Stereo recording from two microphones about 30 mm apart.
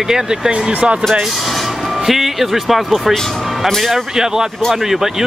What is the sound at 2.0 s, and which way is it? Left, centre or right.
A man's voice, centre.